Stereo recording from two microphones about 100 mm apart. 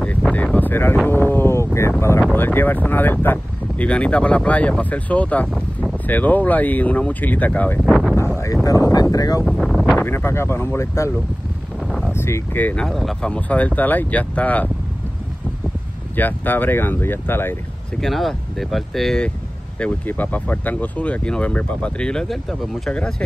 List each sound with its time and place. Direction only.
0.0 s a sound: 10° left (ahead or behind)
2.3 s speech: 20° left (ahead or behind)
5.5 s a sound: 5° right (ahead or behind)
6.0 s speech: 15° left (ahead or behind)
7.8 s speech: centre (ahead or behind)
8.6 s speech: 40° left (ahead or behind)
9.4 s speech: centre (ahead or behind)
9.9 s speech: 25° left (ahead or behind)
12.1 s speech: 25° left (ahead or behind)
12.8 s speech: 5° left (ahead or behind)
16.2 s speech: 20° left (ahead or behind)
18.0 s speech: centre (ahead or behind)
19.8 s speech: 15° left (ahead or behind)